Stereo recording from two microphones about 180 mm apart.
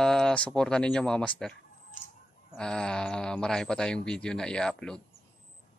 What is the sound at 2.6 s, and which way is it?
Speech, 5° left (ahead or behind).